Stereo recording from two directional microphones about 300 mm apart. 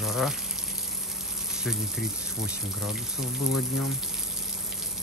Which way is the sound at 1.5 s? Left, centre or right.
Centre.